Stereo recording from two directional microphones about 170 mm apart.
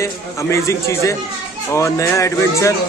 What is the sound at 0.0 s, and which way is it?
A man's voice, 15° left (ahead or behind).